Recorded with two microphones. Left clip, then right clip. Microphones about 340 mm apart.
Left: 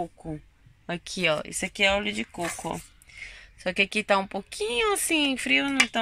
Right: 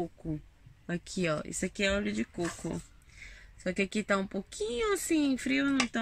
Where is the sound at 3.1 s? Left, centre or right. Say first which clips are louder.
Left 9 dB; centre.